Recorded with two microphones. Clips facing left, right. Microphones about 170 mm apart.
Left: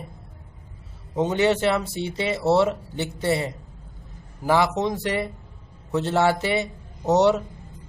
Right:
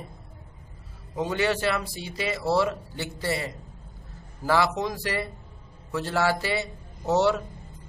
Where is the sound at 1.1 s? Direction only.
20° left (ahead or behind).